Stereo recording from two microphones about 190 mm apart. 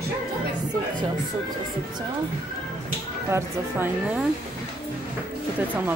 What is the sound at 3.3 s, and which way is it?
Speech, 15° right (ahead or behind).